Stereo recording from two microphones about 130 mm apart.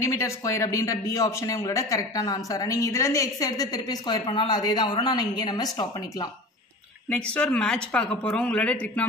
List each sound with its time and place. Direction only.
0.0 s speech: 25° left (ahead or behind)
7.1 s speech: 10° left (ahead or behind)